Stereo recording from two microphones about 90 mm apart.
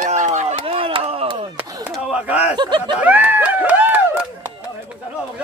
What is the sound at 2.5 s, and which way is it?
Speech, 60° right (ahead or behind).